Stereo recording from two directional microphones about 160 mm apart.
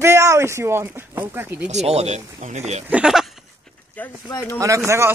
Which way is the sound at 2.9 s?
5° right (ahead or behind).